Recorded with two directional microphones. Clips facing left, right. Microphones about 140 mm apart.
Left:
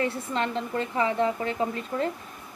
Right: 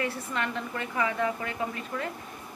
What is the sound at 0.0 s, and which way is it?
Speech, 30° left (ahead or behind).